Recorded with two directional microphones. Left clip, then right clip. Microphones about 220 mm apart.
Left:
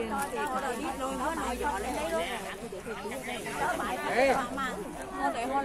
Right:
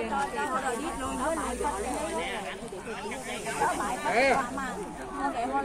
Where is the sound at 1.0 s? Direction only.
25° right (ahead or behind).